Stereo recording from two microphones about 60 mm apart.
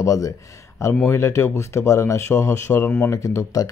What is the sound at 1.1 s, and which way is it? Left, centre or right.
Speech, left.